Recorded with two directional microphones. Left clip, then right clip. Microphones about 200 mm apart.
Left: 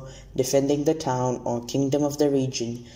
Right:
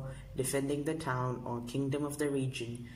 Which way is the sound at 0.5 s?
15° left (ahead or behind).